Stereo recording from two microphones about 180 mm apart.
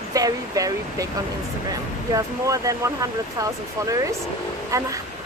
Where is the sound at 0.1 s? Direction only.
20° right (ahead or behind).